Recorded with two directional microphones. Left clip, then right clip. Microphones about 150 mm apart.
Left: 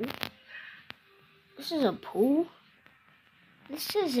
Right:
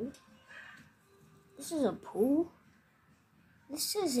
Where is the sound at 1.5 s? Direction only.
10° left (ahead or behind).